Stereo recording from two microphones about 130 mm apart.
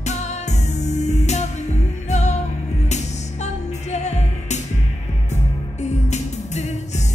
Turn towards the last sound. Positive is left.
turn(degrees=60)  # may be behind; listen again after turning